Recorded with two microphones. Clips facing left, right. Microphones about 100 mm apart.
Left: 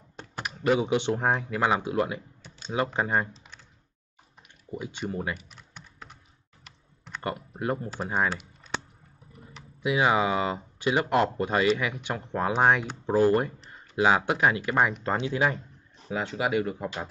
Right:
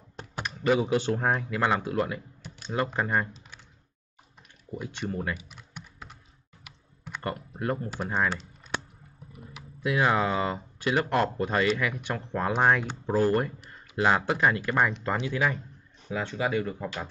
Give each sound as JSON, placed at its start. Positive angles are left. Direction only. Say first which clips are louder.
{"t": 0.4, "sound": "computer keyboard", "louder": "even", "side_deg": 5}
{"t": 0.8, "sound": "speech", "louder": "left 1 dB", "side_deg": 20}
{"t": 1.5, "sound": "speech", "louder": "left 1 dB", "side_deg": 10}
{"t": 1.8, "sound": "speech", "louder": "left 1 dB", "side_deg": 20}
{"t": 3.3, "sound": "typing", "louder": "right 1 dB", "side_deg": -5}
{"t": 4.9, "sound": "speech", "louder": "even", "side_deg": 10}
{"t": 5.3, "sound": "typing", "louder": "right 1 dB", "side_deg": 0}
{"t": 7.2, "sound": "speech", "louder": "left 1 dB", "side_deg": 20}
{"t": 9.3, "sound": "a sound", "louder": "right 2 dB", "side_deg": -5}
{"t": 9.8, "sound": "speech", "louder": "left 1 dB", "side_deg": 15}